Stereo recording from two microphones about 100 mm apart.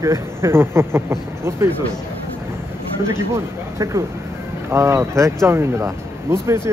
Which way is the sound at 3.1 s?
25° right (ahead or behind).